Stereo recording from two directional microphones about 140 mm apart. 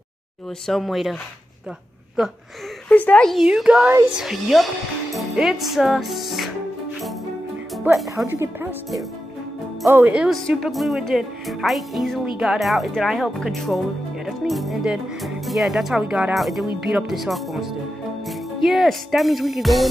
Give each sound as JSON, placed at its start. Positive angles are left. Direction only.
{"t": 0.7, "sound": "speech", "side_deg": 0}
{"t": 2.2, "sound": "speech", "side_deg": 0}
{"t": 2.9, "sound": "speech", "side_deg": 10}
{"t": 7.9, "sound": "speech", "side_deg": 0}
{"t": 8.3, "sound": "speech", "side_deg": -15}
{"t": 9.8, "sound": "speech", "side_deg": -20}
{"t": 10.1, "sound": "speech", "side_deg": -5}